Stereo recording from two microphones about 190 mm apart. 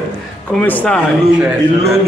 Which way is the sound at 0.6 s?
10° left (ahead or behind).